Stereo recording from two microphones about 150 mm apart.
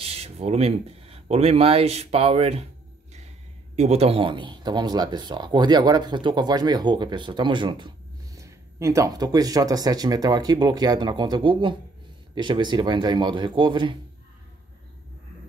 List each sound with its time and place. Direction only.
0.0 s speech: 40° right (ahead or behind)
3.7 s a man's voice: 45° right (ahead or behind)
8.4 s a man's voice: 20° right (ahead or behind)